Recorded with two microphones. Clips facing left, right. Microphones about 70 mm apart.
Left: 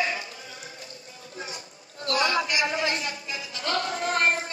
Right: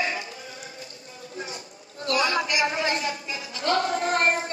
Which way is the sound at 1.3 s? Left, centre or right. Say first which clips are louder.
Right 2 dB; right.